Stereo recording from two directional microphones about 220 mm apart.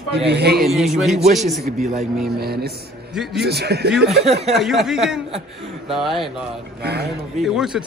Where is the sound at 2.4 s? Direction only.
45° right (ahead or behind).